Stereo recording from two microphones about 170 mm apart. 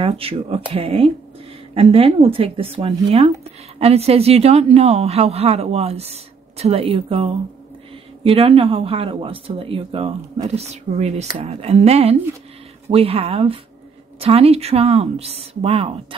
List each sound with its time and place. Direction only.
0.0 s speech: 35° right (ahead or behind)